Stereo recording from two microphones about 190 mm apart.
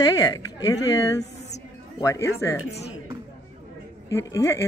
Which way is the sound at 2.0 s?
15° left (ahead or behind).